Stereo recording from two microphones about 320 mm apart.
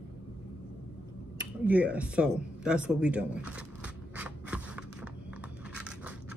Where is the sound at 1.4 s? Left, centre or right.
Centre.